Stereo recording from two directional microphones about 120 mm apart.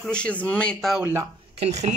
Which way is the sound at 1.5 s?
65° right (ahead or behind).